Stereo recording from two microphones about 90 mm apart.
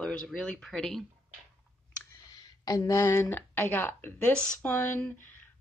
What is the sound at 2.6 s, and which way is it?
A woman's voice, 40° left (ahead or behind).